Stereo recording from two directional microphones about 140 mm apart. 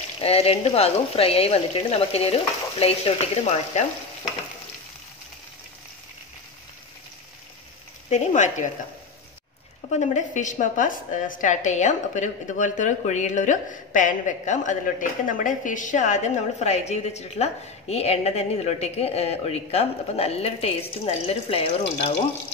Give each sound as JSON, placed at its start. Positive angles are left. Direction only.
{"t": 0.2, "sound": "speech", "side_deg": 45}
{"t": 8.1, "sound": "a woman's voice", "side_deg": 60}
{"t": 9.8, "sound": "a woman's voice", "side_deg": 55}